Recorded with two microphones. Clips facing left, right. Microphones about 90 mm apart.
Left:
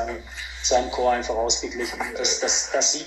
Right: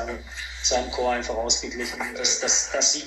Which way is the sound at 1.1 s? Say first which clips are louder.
Left 3 dB; 5° left (ahead or behind).